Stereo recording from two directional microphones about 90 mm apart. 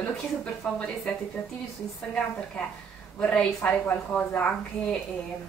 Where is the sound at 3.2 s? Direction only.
15° left (ahead or behind).